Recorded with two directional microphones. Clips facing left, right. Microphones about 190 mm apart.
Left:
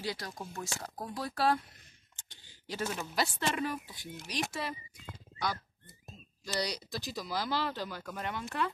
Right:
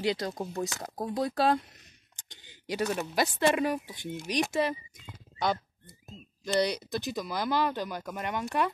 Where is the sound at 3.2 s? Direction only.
15° right (ahead or behind).